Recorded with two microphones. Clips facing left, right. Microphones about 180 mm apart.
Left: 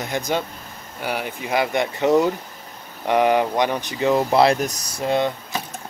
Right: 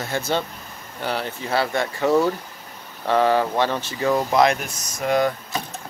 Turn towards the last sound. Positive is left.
turn(degrees=25)  # may be behind; listen again after turning